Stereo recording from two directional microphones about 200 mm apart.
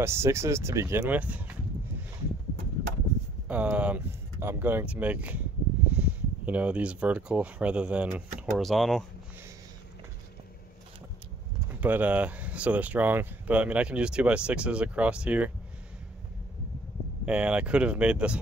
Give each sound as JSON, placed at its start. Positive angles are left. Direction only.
{"t": 0.0, "sound": "speech", "side_deg": -15}
{"t": 3.4, "sound": "speech", "side_deg": -5}
{"t": 11.7, "sound": "speech", "side_deg": -10}
{"t": 17.3, "sound": "speech", "side_deg": -5}